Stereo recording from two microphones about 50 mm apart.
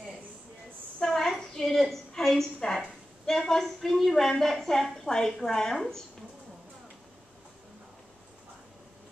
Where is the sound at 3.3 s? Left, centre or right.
Centre.